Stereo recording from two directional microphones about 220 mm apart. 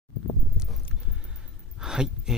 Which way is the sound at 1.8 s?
Centre (ahead or behind).